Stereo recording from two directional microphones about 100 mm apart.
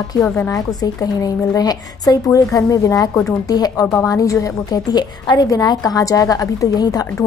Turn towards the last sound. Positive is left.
turn(degrees=35)  # may be behind; listen again after turning